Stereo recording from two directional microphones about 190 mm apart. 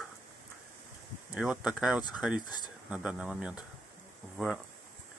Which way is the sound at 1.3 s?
5° right (ahead or behind).